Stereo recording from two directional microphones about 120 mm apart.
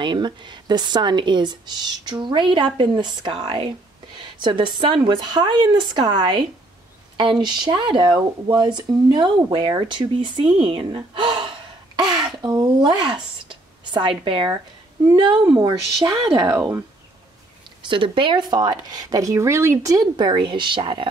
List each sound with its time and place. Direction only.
0.0 s a woman's voice: 40° right (ahead or behind)
12.0 s a sound: 35° right (ahead or behind)
12.6 s a woman's voice: 40° right (ahead or behind)
13.5 s a sound: 45° right (ahead or behind)
15.1 s a woman's voice: 40° right (ahead or behind)
17.8 s a woman's voice: 45° right (ahead or behind)